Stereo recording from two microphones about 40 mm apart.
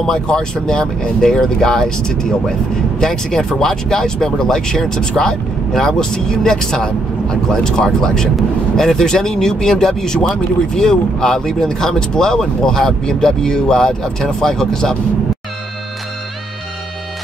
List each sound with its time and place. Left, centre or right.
0.0 s speech: centre